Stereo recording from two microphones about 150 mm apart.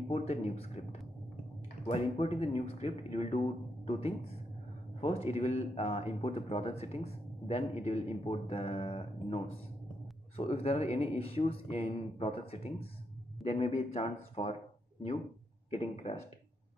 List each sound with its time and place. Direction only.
0.1 s speech: 45° left (ahead or behind)
1.9 s speech: 40° left (ahead or behind)